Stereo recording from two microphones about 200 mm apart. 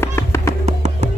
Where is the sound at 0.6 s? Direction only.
35° right (ahead or behind).